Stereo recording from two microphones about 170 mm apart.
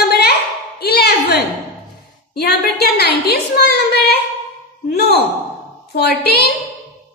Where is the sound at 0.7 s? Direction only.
70° left (ahead or behind).